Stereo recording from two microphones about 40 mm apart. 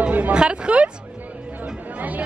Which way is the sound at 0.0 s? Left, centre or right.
Right.